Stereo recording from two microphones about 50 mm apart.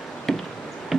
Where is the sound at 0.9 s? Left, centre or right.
Centre.